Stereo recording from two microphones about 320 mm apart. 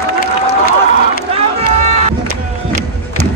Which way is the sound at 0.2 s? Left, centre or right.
Left.